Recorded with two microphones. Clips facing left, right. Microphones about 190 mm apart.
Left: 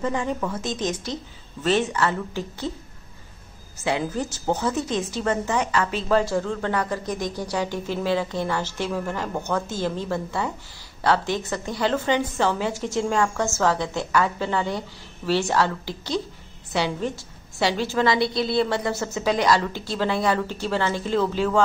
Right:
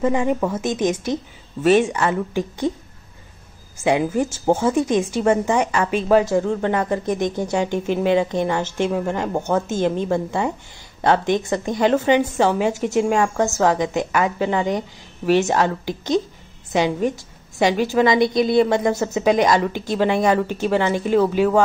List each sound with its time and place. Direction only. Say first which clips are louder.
0.0 s a woman's voice: right 6 dB; 20° right (ahead or behind)
3.8 s a woman's voice: right 6 dB; 15° right (ahead or behind)